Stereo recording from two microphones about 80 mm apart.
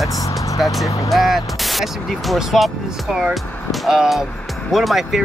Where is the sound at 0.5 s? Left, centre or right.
Centre.